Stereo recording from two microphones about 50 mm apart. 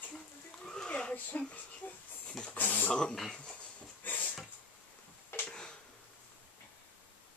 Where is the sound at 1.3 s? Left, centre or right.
Left.